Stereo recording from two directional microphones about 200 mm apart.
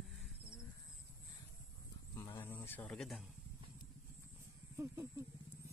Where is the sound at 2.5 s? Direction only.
10° left (ahead or behind).